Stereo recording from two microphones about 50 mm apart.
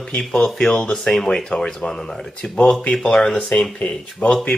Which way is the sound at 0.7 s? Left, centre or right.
Left.